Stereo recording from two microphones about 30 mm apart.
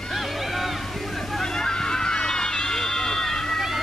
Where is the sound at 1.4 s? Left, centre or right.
Left.